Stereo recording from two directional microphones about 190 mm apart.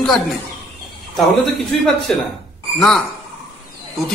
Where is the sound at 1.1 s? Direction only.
Centre (ahead or behind).